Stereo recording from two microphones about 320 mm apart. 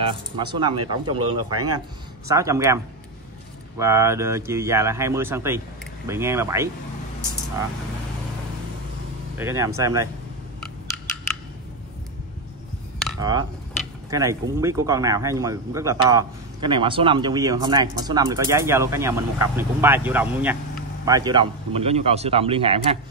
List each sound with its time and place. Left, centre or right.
0.0 s speech: centre
9.4 s speech: centre
13.2 s speech: centre